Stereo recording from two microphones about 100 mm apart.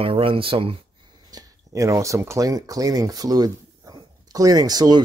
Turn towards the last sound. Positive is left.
turn(degrees=-40)  # may be behind; listen again after turning